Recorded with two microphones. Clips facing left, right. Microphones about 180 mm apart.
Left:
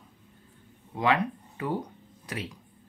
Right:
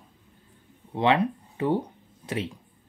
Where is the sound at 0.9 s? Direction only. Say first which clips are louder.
Right 4 dB; 25° right (ahead or behind).